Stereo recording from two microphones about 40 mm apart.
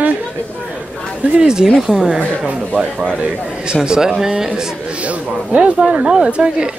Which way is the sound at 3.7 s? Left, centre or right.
Centre.